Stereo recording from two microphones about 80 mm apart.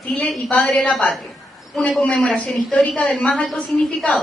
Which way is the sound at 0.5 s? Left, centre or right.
Centre.